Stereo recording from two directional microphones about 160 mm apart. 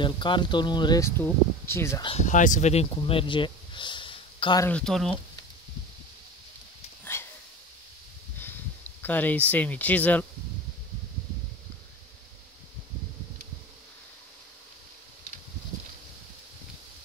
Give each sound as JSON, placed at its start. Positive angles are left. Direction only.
{"t": 0.0, "sound": "speech", "side_deg": 30}
{"t": 2.0, "sound": "speech", "side_deg": 45}
{"t": 4.6, "sound": "speech", "side_deg": 5}
{"t": 7.1, "sound": "sniff", "side_deg": 15}
{"t": 9.0, "sound": "speech", "side_deg": 10}